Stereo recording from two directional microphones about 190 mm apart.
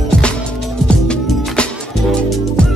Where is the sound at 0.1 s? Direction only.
5° left (ahead or behind).